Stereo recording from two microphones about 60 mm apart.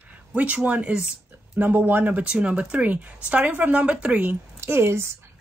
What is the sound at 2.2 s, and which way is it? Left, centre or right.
Speech, centre.